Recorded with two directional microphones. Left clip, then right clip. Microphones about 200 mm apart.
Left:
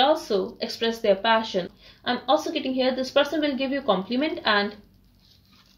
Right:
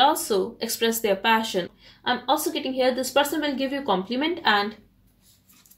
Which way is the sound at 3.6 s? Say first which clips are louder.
Left 1 dB; 40° right (ahead or behind).